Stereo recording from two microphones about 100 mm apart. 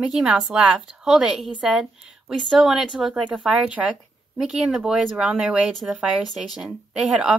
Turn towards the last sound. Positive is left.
turn(degrees=-5)  # may be behind; listen again after turning